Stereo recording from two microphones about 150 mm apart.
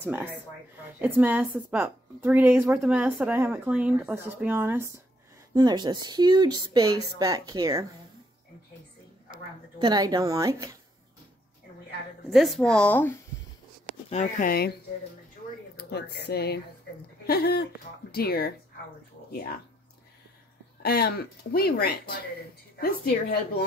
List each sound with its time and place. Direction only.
0.0 s a woman's voice: 10° right (ahead or behind)
5.5 s speech: 30° right (ahead or behind)
9.3 s speech: 30° right (ahead or behind)
12.3 s speech: centre (ahead or behind)
14.1 s speech: 55° left (ahead or behind)
14.5 s speech: 90° left
20.8 s speech: 90° left